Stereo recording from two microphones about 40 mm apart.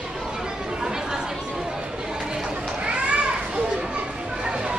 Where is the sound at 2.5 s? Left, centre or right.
Right.